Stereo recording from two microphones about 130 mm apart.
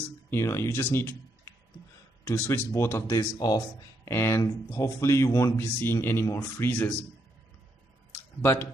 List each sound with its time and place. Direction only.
0.3 s speech: 20° left (ahead or behind)
8.4 s speech: 15° left (ahead or behind)